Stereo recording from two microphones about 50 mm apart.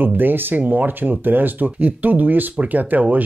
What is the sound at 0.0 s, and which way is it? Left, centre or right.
Speech, right.